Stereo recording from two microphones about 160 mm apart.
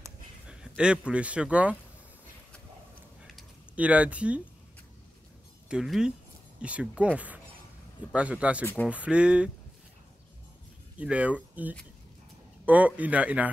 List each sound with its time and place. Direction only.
0.5 s speech: 5° right (ahead or behind)
3.2 s a sound: 5° right (ahead or behind)
5.7 s speech: 5° right (ahead or behind)
11.0 s speech: 10° right (ahead or behind)